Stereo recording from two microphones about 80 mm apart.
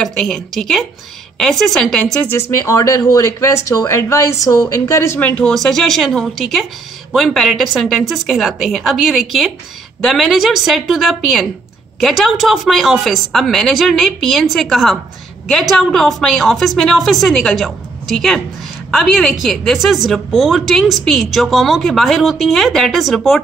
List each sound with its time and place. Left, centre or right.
0.0 s a woman's voice: centre
2.3 s a woman's voice: left
5.5 s a woman's voice: centre